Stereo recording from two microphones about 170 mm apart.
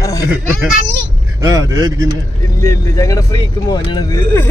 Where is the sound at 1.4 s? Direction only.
20° right (ahead or behind).